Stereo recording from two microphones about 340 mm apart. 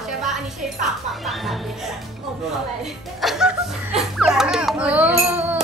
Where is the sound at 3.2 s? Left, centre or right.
Centre.